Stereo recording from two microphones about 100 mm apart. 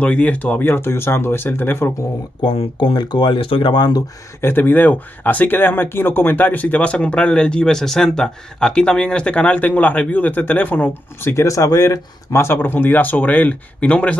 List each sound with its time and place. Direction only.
0.0 s speech: 10° left (ahead or behind)
2.5 s speech: 60° left (ahead or behind)
4.4 s speech: 20° left (ahead or behind)